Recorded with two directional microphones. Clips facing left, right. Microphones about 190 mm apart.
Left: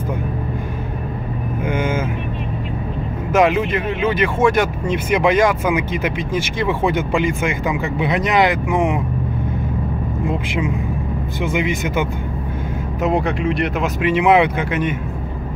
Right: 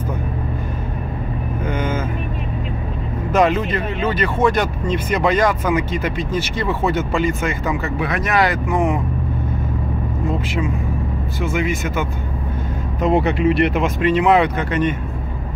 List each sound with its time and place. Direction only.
1.7 s vehicle: 10° left (ahead or behind)
3.3 s speech: 10° left (ahead or behind)
10.2 s vehicle: 15° left (ahead or behind)
11.4 s speech: 15° left (ahead or behind)
13.0 s speech: centre (ahead or behind)
14.0 s speech: 10° left (ahead or behind)